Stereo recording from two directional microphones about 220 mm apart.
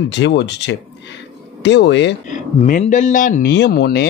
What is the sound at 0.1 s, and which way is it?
Speech, 55° left (ahead or behind).